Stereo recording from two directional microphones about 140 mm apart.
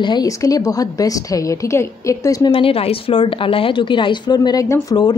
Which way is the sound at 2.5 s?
40° left (ahead or behind).